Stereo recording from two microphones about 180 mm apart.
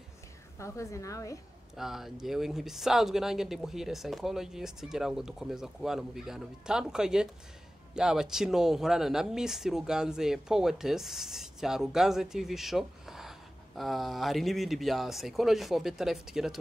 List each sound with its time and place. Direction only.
0.6 s a woman's voice: 15° left (ahead or behind)
1.8 s speech: centre (ahead or behind)